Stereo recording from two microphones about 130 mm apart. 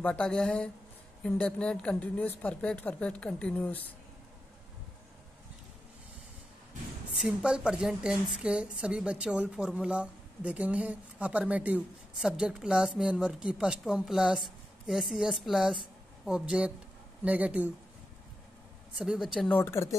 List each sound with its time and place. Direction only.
0.0 s speech: 10° left (ahead or behind)
7.2 s a woman's voice: 5° right (ahead or behind)
18.9 s speech: 5° right (ahead or behind)
19.4 s speech: 15° left (ahead or behind)